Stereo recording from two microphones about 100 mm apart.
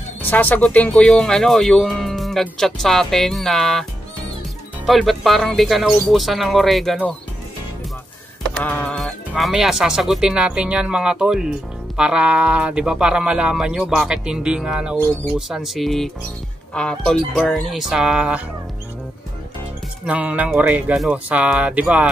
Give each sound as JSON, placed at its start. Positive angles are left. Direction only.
{"t": 0.2, "sound": "speech", "side_deg": 20}
{"t": 4.8, "sound": "speech", "side_deg": 0}
{"t": 8.6, "sound": "speech", "side_deg": 15}
{"t": 9.4, "sound": "speech", "side_deg": -5}
{"t": 20.1, "sound": "speech", "side_deg": -15}